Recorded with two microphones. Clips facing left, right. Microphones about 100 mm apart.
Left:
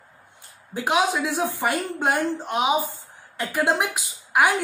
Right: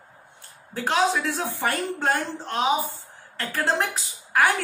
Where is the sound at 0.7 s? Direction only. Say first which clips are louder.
Left 1 dB; 15° left (ahead or behind).